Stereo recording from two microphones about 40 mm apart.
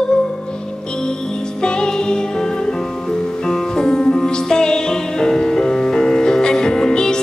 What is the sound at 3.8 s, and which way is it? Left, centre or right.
Music, centre.